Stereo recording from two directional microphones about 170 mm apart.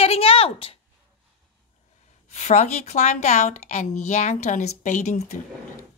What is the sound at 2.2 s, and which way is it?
A woman's voice, 40° left (ahead or behind).